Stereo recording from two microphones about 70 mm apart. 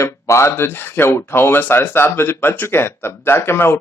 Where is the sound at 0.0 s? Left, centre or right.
Left.